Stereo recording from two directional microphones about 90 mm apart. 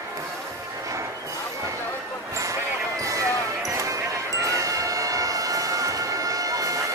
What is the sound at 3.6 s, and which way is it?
Basketball bounce, 40° right (ahead or behind).